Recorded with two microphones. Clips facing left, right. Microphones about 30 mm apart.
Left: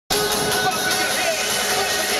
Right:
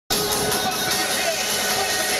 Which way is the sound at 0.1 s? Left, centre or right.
Centre.